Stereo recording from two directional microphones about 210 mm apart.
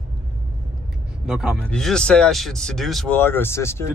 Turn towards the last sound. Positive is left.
turn(degrees=10)  # may be behind; listen again after turning